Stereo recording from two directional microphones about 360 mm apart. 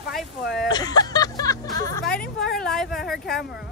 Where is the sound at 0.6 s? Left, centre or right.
Centre.